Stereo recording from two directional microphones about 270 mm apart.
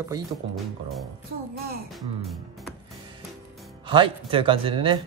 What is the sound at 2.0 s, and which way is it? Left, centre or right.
Music, centre.